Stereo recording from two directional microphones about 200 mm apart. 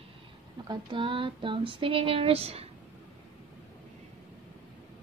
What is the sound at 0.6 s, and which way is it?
Female singing, 25° right (ahead or behind).